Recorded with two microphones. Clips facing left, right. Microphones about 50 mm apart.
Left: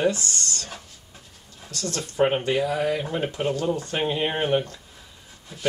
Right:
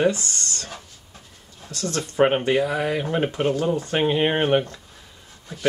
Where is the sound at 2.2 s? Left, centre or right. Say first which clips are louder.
Right 3 dB; right.